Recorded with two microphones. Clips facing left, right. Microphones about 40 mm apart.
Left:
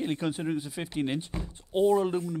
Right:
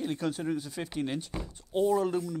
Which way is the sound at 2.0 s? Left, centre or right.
Left.